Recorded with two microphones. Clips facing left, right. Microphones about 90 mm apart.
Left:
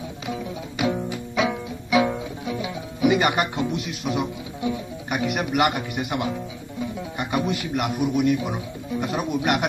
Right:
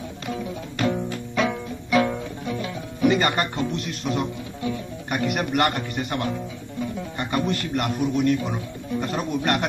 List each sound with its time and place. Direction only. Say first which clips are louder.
0.3 s music: right 1 dB; 5° left (ahead or behind)
4.6 s speech: left 2 dB; 20° left (ahead or behind)
5.1 s speech: even; 5° left (ahead or behind)